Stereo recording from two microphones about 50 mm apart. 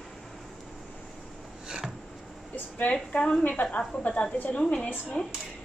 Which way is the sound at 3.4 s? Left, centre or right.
Left.